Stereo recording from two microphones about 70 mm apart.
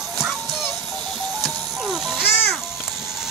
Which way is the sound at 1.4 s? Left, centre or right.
Centre.